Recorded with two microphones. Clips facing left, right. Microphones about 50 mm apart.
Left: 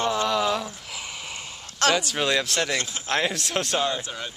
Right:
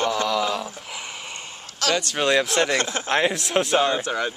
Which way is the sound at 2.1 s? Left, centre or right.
Centre.